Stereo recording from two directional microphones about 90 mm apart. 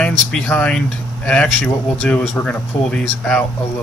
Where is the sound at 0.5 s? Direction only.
15° left (ahead or behind).